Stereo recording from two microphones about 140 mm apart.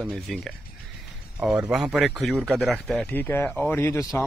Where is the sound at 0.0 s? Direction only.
Centre (ahead or behind).